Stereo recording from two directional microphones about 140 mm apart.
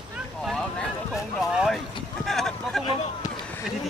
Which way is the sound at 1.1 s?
5° right (ahead or behind).